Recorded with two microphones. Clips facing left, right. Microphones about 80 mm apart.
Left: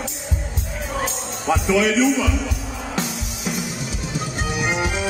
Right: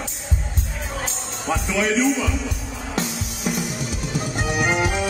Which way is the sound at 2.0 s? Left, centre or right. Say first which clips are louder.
Left 2 dB; left.